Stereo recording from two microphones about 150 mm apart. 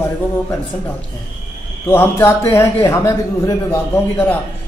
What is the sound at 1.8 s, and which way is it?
A man's voice, 15° left (ahead or behind).